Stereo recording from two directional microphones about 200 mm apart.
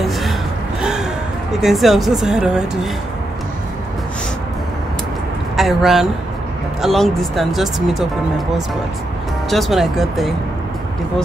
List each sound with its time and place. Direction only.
1.6 s speech: centre (ahead or behind)
5.6 s speech: centre (ahead or behind)
9.5 s speech: centre (ahead or behind)